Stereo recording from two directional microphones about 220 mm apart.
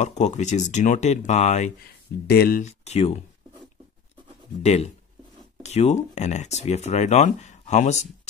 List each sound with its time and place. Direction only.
0.0 s speech: 30° left (ahead or behind)
2.2 s speech: 45° left (ahead or behind)
2.6 s speech: 30° left (ahead or behind)
4.6 s speech: 30° left (ahead or behind)